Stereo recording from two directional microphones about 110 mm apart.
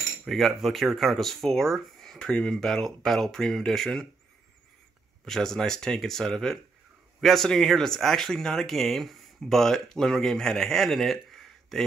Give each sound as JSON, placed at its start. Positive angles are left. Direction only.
{"t": 0.2, "sound": "speech", "side_deg": 0}
{"t": 5.2, "sound": "speech", "side_deg": 5}